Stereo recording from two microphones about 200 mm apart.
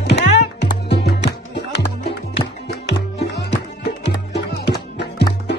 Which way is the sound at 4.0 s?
55° left (ahead or behind).